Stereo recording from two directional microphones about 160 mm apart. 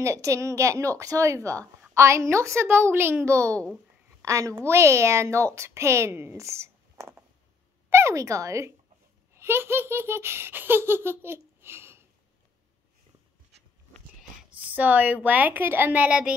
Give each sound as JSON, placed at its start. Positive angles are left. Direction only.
{"t": 0.0, "sound": "a woman's voice", "side_deg": -20}
{"t": 14.5, "sound": "a sound", "side_deg": -10}
{"t": 15.2, "sound": "a woman's voice", "side_deg": -10}